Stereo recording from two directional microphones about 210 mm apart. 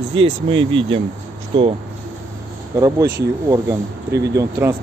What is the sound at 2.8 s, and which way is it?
Speech, 15° right (ahead or behind).